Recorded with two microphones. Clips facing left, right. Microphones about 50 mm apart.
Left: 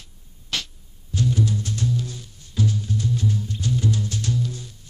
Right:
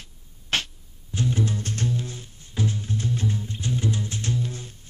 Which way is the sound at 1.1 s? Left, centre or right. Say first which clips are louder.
Left 2 dB; right.